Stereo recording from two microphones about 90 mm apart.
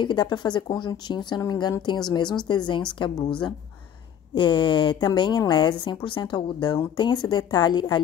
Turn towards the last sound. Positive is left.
turn(degrees=50)  # may be behind; listen again after turning